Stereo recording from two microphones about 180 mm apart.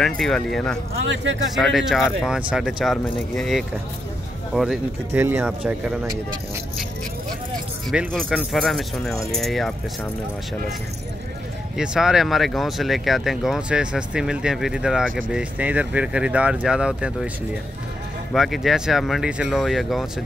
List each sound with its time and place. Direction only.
0.0 s speech: centre (ahead or behind)
5.2 s speech: 15° right (ahead or behind)
7.9 s speech: centre (ahead or behind)
11.7 s speech: 5° right (ahead or behind)
18.3 s speech: centre (ahead or behind)